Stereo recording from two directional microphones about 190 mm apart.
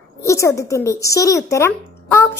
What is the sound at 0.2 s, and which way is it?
Speech, 15° left (ahead or behind).